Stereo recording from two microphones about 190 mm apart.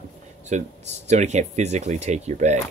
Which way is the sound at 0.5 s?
40° right (ahead or behind).